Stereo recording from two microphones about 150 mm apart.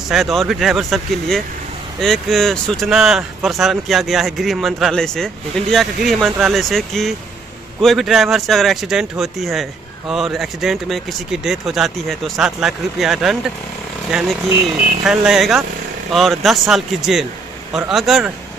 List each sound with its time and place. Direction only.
0.1 s speech: centre (ahead or behind)
14.5 s speech: 15° right (ahead or behind)
15.0 s speech: 5° right (ahead or behind)